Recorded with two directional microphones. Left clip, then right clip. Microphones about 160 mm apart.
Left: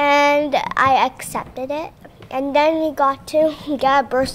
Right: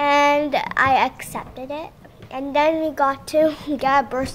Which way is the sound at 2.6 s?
15° left (ahead or behind).